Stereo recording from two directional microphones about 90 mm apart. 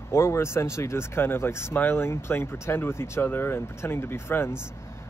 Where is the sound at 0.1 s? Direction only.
30° left (ahead or behind).